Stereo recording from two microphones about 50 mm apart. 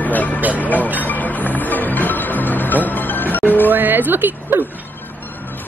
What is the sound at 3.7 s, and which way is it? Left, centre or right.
Speech, right.